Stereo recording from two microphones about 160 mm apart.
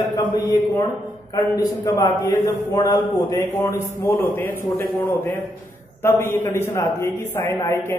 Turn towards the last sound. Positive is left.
turn(degrees=15)  # may be behind; listen again after turning